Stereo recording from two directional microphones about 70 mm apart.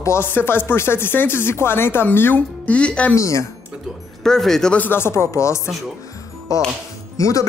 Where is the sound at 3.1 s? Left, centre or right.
Left.